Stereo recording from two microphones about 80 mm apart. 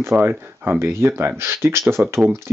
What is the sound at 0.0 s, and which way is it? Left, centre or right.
Speech, right.